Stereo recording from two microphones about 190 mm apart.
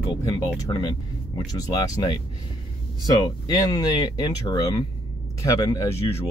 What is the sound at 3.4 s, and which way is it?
Speech, 20° left (ahead or behind).